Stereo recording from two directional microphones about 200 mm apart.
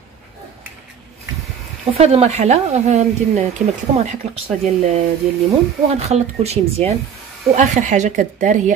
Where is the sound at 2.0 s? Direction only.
30° right (ahead or behind).